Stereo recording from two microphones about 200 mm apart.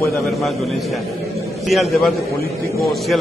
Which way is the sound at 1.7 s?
Centre (ahead or behind).